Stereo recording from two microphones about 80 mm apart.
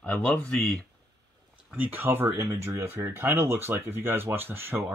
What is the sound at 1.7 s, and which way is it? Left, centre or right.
Speech, right.